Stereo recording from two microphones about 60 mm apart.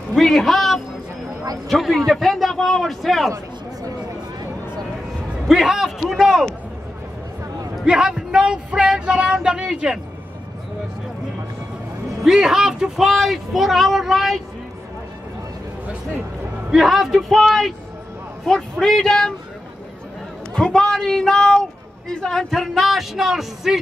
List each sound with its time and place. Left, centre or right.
0.1 s music: centre
1.7 s speech: centre
5.5 s speech: centre
7.8 s a sound: centre
12.2 s speech: centre
16.7 s speech: centre
20.5 s speech: centre